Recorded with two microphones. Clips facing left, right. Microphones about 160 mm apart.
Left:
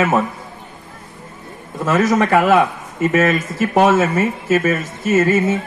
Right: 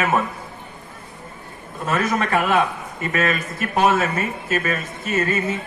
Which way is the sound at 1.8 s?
90° left.